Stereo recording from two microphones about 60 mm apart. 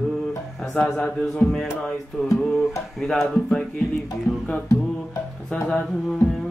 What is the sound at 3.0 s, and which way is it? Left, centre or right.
Speech, centre.